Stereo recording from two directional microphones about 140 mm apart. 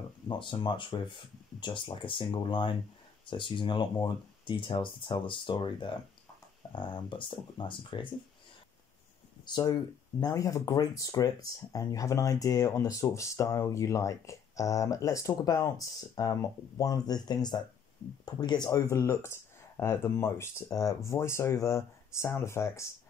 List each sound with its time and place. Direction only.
0.3 s speech: 35° left (ahead or behind)
9.5 s speech: 25° left (ahead or behind)